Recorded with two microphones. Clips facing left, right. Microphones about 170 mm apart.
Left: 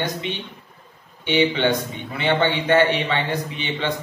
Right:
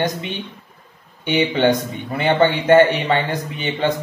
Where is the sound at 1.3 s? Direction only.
45° right (ahead or behind).